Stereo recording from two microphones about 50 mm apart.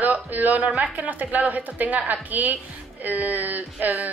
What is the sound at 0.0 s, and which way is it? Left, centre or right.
Speech, right.